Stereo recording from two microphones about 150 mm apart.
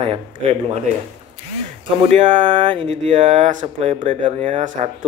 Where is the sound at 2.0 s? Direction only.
40° right (ahead or behind).